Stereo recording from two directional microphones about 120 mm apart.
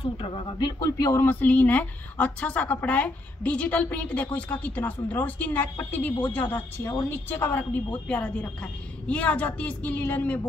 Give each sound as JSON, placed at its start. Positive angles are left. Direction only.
{"t": 0.0, "sound": "speech", "side_deg": 45}
{"t": 1.3, "sound": "speech", "side_deg": 15}
{"t": 6.9, "sound": "a woman's voice", "side_deg": 30}
{"t": 7.2, "sound": "speech", "side_deg": 15}